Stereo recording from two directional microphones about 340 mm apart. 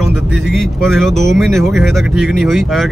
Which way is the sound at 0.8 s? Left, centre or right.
Centre.